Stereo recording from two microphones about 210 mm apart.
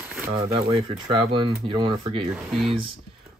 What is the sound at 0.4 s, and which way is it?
Speech, 30° right (ahead or behind).